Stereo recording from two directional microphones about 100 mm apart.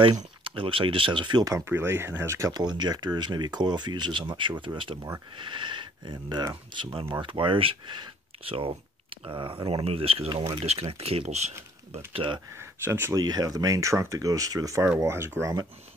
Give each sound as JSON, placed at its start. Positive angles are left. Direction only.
{"t": 0.4, "sound": "speech", "side_deg": -65}
{"t": 1.4, "sound": "speech", "side_deg": -30}
{"t": 10.3, "sound": "speech", "side_deg": -55}
{"t": 10.6, "sound": "speech", "side_deg": -85}
{"t": 11.9, "sound": "speech", "side_deg": -65}
{"t": 12.8, "sound": "speech", "side_deg": -20}
{"t": 13.1, "sound": "speech", "side_deg": -40}